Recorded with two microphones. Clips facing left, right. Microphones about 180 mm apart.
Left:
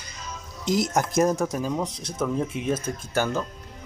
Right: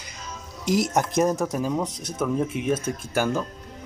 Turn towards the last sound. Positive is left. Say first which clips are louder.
# right 1 dB
turn(degrees=-10)  # may be behind; listen again after turning